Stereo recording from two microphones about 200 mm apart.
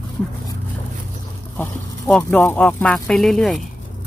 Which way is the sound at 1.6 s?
5° left (ahead or behind).